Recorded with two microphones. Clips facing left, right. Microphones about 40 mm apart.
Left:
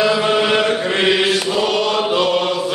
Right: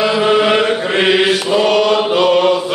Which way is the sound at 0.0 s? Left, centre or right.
Centre.